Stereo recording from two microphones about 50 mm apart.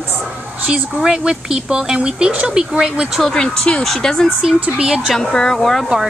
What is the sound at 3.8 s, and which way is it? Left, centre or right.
Speech, centre.